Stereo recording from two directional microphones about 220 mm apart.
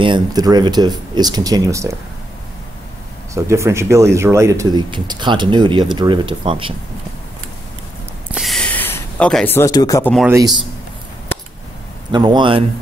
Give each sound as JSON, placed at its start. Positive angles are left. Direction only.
{"t": 0.0, "sound": "speech", "side_deg": -20}
{"t": 3.3, "sound": "speech", "side_deg": -15}
{"t": 8.3, "sound": "a sound", "side_deg": 0}
{"t": 10.1, "sound": "speech", "side_deg": -5}
{"t": 12.1, "sound": "speech", "side_deg": -20}